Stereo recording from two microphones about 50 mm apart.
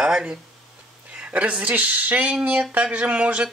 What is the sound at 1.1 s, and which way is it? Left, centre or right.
Speech, right.